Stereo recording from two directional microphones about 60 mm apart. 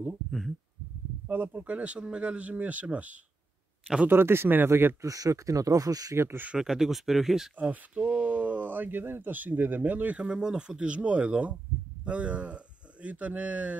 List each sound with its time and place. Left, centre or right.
1.2 s speech: right
4.1 s speech: right
5.0 s speech: right
6.1 s speech: right
6.6 s speech: centre
7.5 s speech: right
10.2 s speech: centre